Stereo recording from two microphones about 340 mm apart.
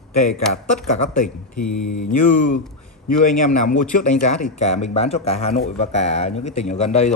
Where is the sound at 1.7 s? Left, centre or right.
Left.